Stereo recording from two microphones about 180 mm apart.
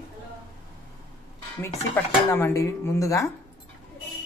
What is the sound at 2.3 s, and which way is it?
Speech, 15° left (ahead or behind).